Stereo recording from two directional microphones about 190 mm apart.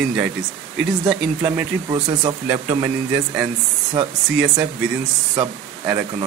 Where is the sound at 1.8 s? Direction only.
25° right (ahead or behind).